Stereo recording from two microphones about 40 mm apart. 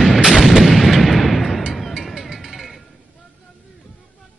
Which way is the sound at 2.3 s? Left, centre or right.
Centre.